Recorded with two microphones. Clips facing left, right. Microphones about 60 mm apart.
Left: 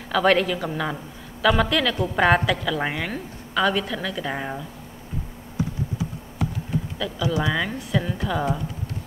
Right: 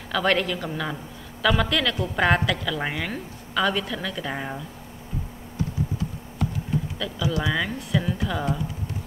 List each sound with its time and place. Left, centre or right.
0.1 s a woman's voice: centre
5.6 s computer keyboard: centre
7.0 s a woman's voice: centre